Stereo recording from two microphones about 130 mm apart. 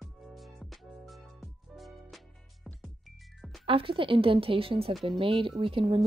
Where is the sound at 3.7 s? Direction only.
45° right (ahead or behind).